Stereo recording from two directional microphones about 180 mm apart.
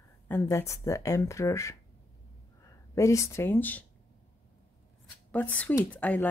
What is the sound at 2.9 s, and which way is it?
Speech, 15° left (ahead or behind).